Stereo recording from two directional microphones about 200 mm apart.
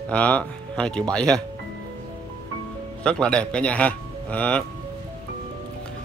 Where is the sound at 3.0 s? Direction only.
5° left (ahead or behind).